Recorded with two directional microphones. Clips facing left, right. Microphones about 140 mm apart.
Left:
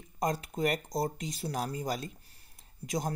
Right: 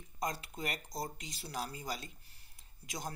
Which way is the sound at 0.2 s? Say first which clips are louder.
Left 8 dB; 45° left (ahead or behind).